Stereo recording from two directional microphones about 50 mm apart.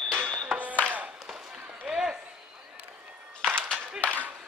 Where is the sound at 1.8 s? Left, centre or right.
Centre.